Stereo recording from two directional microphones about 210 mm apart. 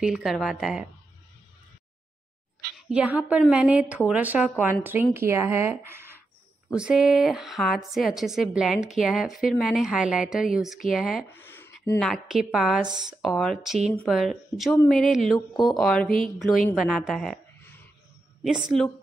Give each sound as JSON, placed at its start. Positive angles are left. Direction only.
{"t": 0.0, "sound": "a woman's voice", "side_deg": -5}
{"t": 2.9, "sound": "a woman's voice", "side_deg": -5}
{"t": 11.2, "sound": "a sound", "side_deg": 10}
{"t": 12.1, "sound": "a woman's voice", "side_deg": 0}
{"t": 15.3, "sound": "speech", "side_deg": 20}
{"t": 15.8, "sound": "a woman's voice", "side_deg": 5}